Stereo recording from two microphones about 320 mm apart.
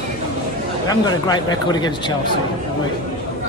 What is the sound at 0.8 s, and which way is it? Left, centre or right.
Speech, centre.